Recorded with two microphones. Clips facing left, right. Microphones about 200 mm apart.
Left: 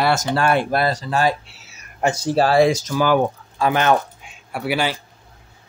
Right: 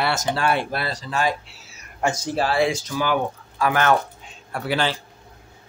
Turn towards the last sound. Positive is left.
turn(degrees=10)  # may be behind; listen again after turning